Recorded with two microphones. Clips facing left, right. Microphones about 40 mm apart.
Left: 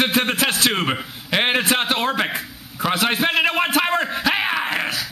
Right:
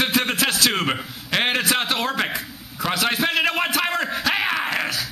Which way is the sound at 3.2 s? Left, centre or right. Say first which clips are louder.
Left 2 dB; centre.